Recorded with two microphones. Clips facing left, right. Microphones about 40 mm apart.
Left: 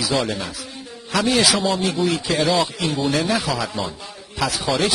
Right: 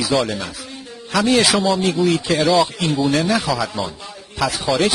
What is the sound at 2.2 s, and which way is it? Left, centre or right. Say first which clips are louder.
Speech: right 2 dB; right.